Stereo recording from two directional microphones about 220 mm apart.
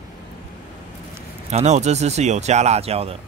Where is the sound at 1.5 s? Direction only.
30° right (ahead or behind).